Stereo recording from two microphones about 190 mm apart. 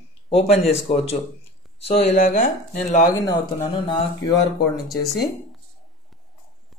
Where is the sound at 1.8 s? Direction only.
30° left (ahead or behind).